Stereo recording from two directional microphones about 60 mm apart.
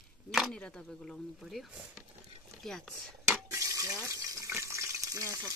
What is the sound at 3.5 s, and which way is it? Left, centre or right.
Water, right.